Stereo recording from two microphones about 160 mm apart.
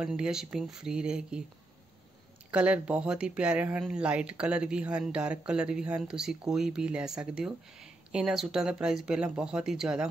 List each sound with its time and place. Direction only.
0.0 s speech: 5° right (ahead or behind)
2.5 s speech: 5° right (ahead or behind)